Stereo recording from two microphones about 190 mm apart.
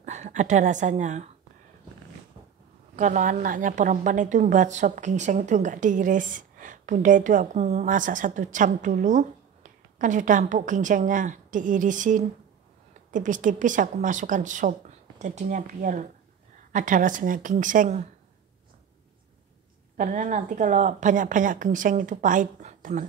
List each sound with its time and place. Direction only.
0.0 s a woman's voice: 40° right (ahead or behind)
3.0 s a woman's voice: 40° right (ahead or behind)
20.0 s a woman's voice: 40° right (ahead or behind)